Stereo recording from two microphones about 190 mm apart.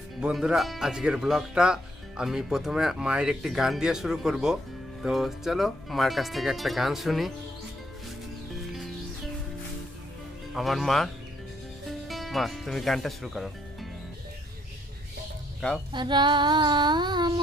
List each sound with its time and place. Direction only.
0.2 s speech: 5° right (ahead or behind)
10.5 s speech: centre (ahead or behind)
12.1 s speech: centre (ahead or behind)
15.9 s female singing: 25° right (ahead or behind)